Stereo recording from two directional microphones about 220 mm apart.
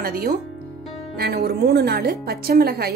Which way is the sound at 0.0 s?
40° right (ahead or behind).